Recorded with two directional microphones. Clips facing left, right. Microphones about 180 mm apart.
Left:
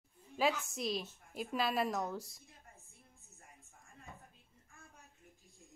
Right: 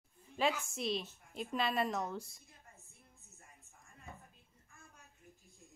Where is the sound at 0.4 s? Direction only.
Centre (ahead or behind).